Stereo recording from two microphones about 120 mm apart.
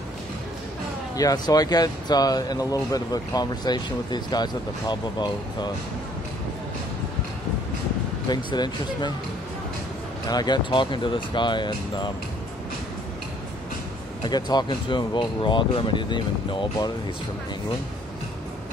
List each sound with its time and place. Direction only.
1.1 s speech: 30° left (ahead or behind)
8.3 s speech: 40° left (ahead or behind)
10.2 s speech: 35° left (ahead or behind)
14.2 s speech: 35° left (ahead or behind)